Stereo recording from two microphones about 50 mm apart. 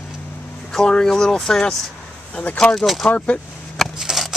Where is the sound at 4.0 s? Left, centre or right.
Centre.